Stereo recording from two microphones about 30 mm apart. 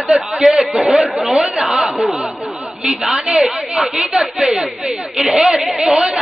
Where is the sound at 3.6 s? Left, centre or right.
Centre.